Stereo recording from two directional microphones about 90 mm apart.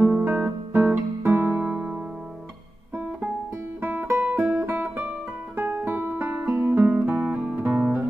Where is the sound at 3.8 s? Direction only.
20° right (ahead or behind).